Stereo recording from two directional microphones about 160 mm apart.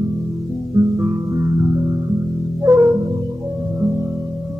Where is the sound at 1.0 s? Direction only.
20° right (ahead or behind).